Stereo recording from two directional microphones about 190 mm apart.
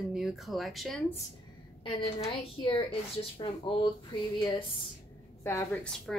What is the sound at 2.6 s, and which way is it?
Speech, 25° left (ahead or behind).